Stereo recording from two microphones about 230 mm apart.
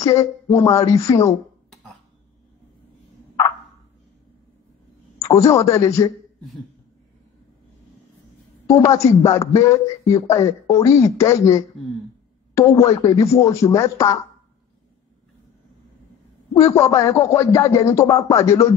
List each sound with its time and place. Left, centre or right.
0.0 s a man's voice: centre
5.2 s a man's voice: centre
8.6 s a man's voice: centre
16.5 s a man's voice: centre